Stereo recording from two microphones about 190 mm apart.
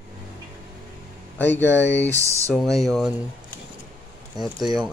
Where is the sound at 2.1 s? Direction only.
15° right (ahead or behind).